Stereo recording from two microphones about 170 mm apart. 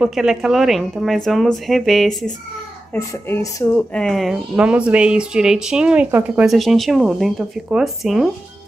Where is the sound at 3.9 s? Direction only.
5° left (ahead or behind).